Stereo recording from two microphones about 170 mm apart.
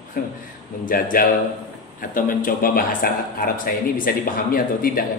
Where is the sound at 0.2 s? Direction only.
55° left (ahead or behind).